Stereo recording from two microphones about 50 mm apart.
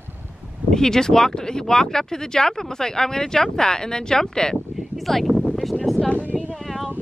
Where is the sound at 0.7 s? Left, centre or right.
Centre.